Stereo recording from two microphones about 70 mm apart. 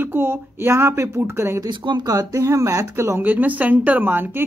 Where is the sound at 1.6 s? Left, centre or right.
Right.